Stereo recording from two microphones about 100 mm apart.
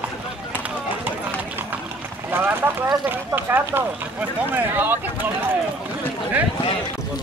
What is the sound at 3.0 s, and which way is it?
Speech, 20° right (ahead or behind).